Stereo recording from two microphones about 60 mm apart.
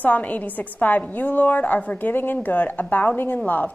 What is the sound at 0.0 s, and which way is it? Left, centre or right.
A woman's voice, left.